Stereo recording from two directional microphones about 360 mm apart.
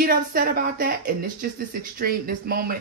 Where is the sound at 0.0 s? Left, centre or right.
Right.